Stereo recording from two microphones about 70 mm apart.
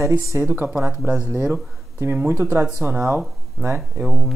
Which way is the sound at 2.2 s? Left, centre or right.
Right.